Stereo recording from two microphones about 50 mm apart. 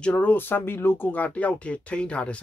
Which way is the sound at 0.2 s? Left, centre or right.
Left.